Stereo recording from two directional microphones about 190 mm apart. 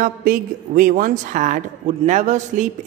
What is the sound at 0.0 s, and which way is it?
A woman's voice, 45° right (ahead or behind).